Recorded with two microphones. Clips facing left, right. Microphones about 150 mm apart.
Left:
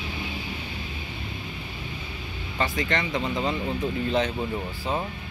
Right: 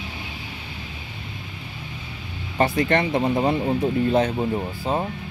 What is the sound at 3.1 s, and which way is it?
Speech, 45° right (ahead or behind).